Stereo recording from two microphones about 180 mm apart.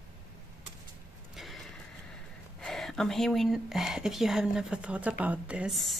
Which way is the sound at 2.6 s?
Centre (ahead or behind).